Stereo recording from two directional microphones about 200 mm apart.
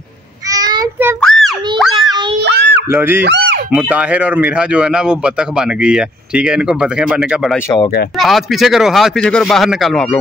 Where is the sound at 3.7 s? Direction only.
5° right (ahead or behind).